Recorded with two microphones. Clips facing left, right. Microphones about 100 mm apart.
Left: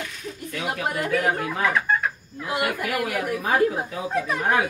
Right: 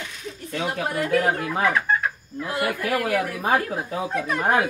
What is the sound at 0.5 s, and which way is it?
Speech, 30° right (ahead or behind).